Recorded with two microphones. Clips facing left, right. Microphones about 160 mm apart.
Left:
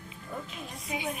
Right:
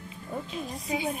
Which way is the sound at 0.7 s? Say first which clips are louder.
Right 4 dB; 35° right (ahead or behind).